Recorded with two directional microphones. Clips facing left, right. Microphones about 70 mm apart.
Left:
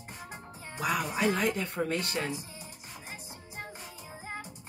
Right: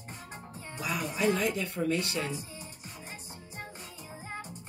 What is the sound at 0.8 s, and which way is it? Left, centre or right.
Speech, left.